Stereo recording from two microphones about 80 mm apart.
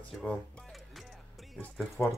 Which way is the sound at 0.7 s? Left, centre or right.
Centre.